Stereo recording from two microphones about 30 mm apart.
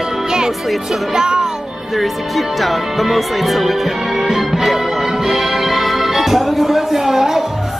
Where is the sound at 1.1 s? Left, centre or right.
Right.